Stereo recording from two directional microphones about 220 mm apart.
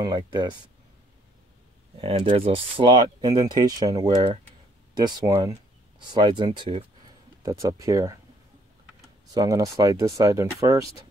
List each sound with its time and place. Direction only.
0.0 s speech: 20° right (ahead or behind)
2.0 s speech: 25° right (ahead or behind)